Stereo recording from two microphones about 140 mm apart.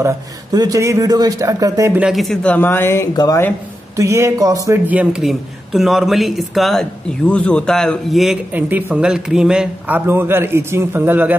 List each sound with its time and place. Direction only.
0.0 s a man's voice: 25° right (ahead or behind)
2.0 s speech: 5° right (ahead or behind)
2.5 s speech: 15° left (ahead or behind)
3.9 s a man's voice: 20° right (ahead or behind)
4.8 s speech: 10° right (ahead or behind)
8.5 s a man's voice: 15° right (ahead or behind)